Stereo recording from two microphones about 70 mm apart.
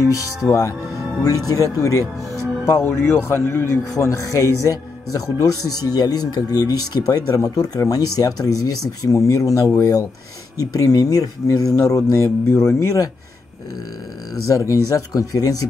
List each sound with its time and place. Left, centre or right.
0.0 s speech: left
4.0 s speech: left
14.5 s speech: left